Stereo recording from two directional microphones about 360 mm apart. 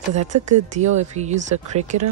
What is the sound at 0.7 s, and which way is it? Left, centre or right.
Speech, centre.